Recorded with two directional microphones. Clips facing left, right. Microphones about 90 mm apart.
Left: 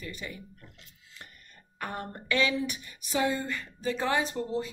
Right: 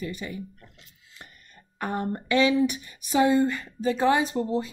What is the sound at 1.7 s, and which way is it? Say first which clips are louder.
Speech: right 8 dB; 20° right (ahead or behind).